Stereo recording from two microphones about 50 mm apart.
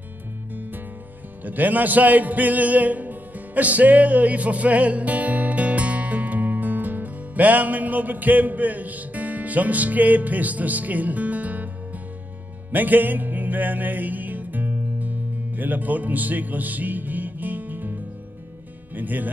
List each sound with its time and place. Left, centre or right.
1.4 s speech: right
12.7 s music: right
18.9 s speech: right